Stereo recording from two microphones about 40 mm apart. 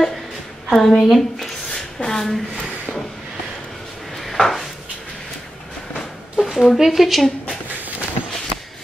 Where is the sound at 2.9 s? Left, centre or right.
Left.